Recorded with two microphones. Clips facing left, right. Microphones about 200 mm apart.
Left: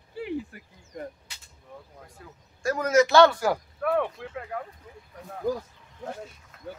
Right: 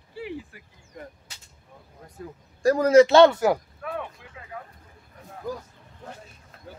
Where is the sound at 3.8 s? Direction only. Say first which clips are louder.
Left 8 dB; 65° left (ahead or behind).